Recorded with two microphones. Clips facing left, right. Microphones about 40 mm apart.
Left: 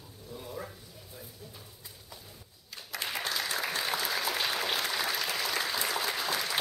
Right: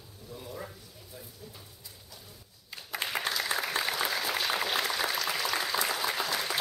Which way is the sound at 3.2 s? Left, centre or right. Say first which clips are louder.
Right 3 dB; right.